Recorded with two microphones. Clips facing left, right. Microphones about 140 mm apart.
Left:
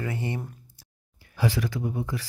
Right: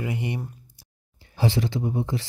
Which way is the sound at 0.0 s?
15° right (ahead or behind).